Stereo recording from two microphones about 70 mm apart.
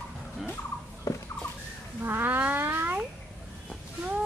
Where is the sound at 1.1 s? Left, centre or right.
Left.